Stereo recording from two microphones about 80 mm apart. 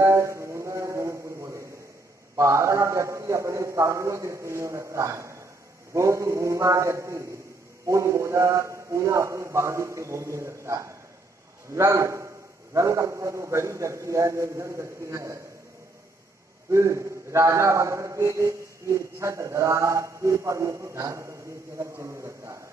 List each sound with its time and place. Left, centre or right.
0.0 s a sound: right
2.3 s a man's voice: right
16.7 s a man's voice: right